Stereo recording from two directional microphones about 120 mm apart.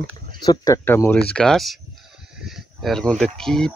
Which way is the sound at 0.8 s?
20° left (ahead or behind).